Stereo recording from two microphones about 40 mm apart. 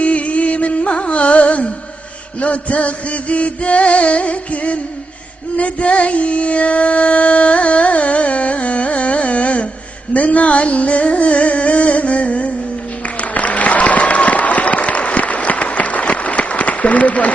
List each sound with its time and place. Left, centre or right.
0.0 s music: left
13.2 s applause: left